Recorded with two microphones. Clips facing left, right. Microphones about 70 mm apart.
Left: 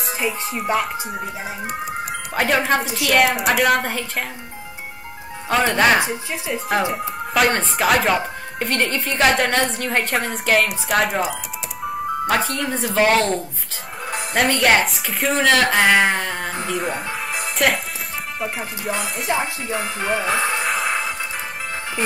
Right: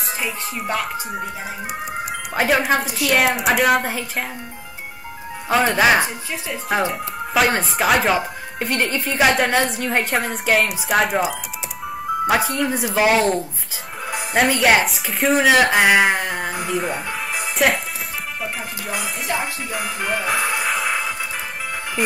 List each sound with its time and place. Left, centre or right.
0.2 s a woman's voice: centre
5.5 s a woman's voice: centre
5.9 s speech: centre
6.9 s a woman's voice: centre
16.7 s music: centre
18.4 s a woman's voice: centre
19.2 s speech: left
20.2 s speech: centre
20.6 s music: centre